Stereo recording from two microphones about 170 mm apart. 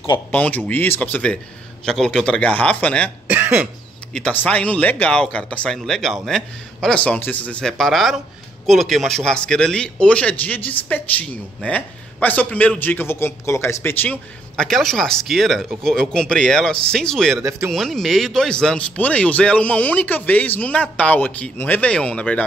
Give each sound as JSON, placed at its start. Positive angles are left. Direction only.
{"t": 0.3, "sound": "speech", "side_deg": 10}
{"t": 3.3, "sound": "cough", "side_deg": -10}
{"t": 4.1, "sound": "speech", "side_deg": 10}
{"t": 17.4, "sound": "speech", "side_deg": -15}
{"t": 17.6, "sound": "speech", "side_deg": 0}